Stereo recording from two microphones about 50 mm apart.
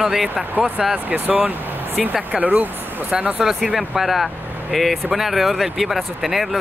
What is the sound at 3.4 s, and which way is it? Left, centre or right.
Speech, centre.